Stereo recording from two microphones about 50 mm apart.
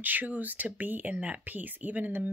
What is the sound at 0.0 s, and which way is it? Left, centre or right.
Speech, right.